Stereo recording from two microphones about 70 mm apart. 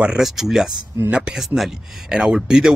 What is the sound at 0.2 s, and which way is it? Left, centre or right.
Speech, centre.